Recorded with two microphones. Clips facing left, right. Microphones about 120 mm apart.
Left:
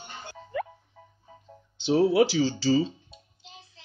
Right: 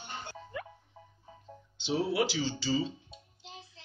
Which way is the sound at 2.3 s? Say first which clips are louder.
Left 8 dB; 70° left (ahead or behind).